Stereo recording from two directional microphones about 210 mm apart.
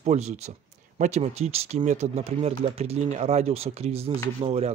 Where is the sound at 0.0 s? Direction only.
30° right (ahead or behind).